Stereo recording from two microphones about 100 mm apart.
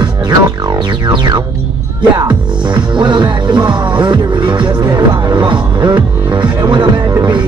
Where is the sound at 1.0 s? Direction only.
50° right (ahead or behind).